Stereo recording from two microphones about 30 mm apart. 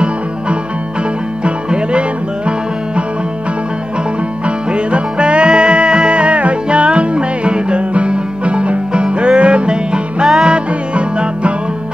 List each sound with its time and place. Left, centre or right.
1.4 s music: right
4.7 s music: right